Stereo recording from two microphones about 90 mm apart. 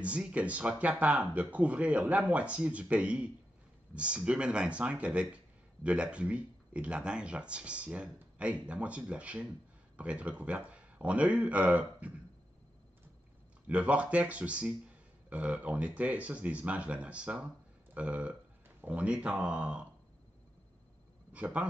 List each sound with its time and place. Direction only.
0.0 s speech: 15° right (ahead or behind)
13.7 s speech: 15° right (ahead or behind)
21.3 s a man's voice: 15° right (ahead or behind)